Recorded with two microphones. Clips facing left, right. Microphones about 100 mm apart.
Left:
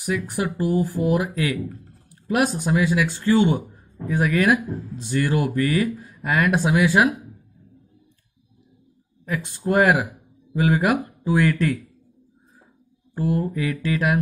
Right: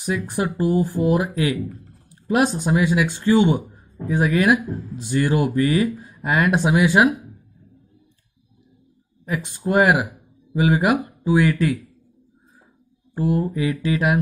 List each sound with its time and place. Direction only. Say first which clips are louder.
0.0 s speech: right 1 dB; 25° right (ahead or behind)
9.2 s speech: right 1 dB; 15° right (ahead or behind)
13.1 s speech: right 2 dB; 20° right (ahead or behind)